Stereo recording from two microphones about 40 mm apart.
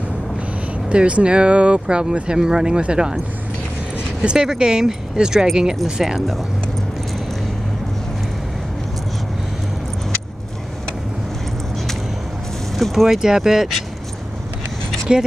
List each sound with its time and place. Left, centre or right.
0.8 s speech: right
4.2 s speech: right; by 6.4 s centre
12.7 s speech: centre
13.0 s speech: centre
15.1 s speech: centre